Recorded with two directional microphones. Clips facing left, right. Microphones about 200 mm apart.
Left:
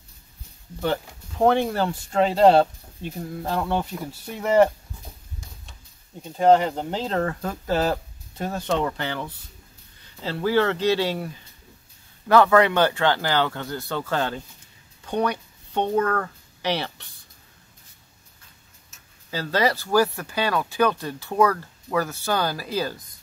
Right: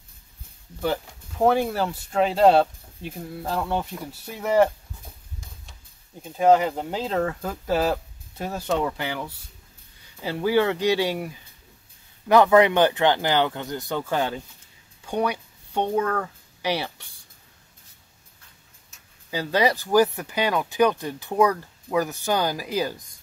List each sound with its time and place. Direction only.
1.4 s speech: 5° right (ahead or behind)
6.2 s speech: 5° right (ahead or behind)
19.3 s speech: 15° right (ahead or behind)